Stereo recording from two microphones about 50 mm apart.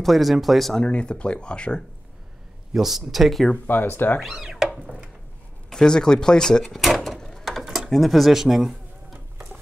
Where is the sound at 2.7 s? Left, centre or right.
Centre.